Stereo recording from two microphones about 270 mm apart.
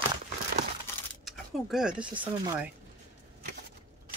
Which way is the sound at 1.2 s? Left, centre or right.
Centre.